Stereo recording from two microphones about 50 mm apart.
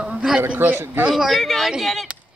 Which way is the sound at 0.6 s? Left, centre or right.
Right.